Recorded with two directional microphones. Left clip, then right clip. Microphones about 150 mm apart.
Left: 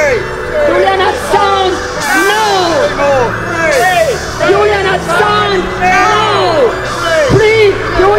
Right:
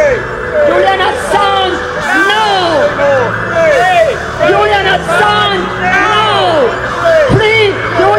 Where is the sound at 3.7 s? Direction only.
30° left (ahead or behind).